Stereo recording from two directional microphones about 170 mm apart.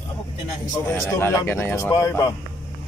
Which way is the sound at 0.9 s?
15° left (ahead or behind).